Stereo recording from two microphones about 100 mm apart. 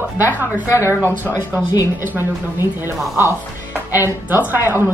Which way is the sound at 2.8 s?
25° right (ahead or behind).